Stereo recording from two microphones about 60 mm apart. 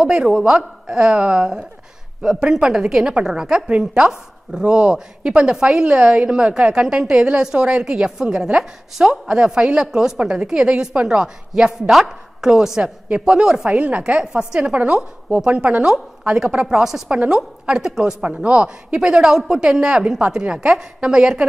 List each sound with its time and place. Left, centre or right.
0.0 s speech: centre